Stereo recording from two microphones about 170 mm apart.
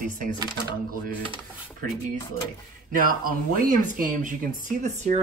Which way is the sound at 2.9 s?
55° right (ahead or behind).